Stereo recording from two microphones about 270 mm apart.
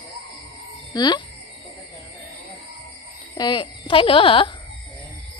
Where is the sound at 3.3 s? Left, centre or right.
Centre.